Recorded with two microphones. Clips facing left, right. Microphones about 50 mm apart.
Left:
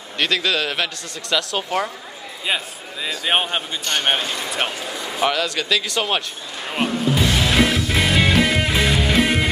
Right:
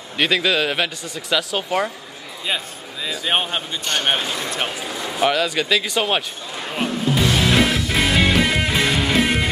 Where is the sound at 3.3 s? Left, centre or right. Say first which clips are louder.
Left 1 dB; centre.